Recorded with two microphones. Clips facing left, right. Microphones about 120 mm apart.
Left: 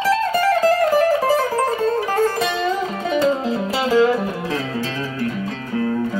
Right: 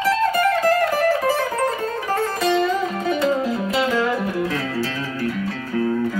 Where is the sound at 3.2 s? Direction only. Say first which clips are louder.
Left 2 dB; 30° left (ahead or behind).